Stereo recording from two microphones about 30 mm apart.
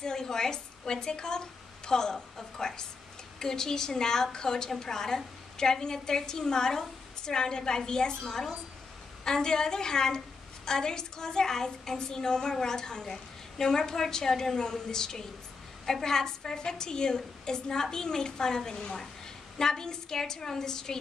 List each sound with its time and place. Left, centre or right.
0.0 s a woman's voice: centre